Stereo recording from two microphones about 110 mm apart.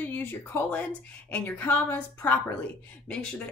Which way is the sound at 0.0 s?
20° left (ahead or behind).